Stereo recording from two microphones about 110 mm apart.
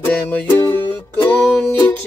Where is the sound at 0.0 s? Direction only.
15° left (ahead or behind).